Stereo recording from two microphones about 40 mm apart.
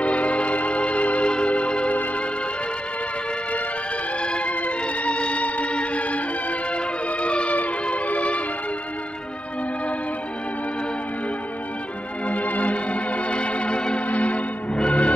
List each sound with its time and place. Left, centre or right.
0.0 s organ: left
4.5 s music: left
12.3 s organ: left
14.0 s music: left